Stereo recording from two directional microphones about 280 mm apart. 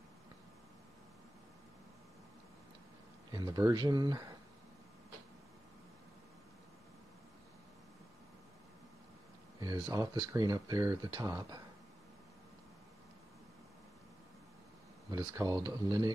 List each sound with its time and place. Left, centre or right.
3.3 s speech: centre
9.6 s speech: centre
15.0 s speech: centre